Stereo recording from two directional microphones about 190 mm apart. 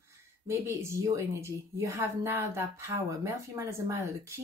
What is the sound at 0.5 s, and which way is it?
Speech, 15° right (ahead or behind).